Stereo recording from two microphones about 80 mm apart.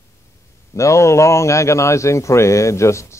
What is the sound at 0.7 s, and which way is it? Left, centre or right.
Speech, left.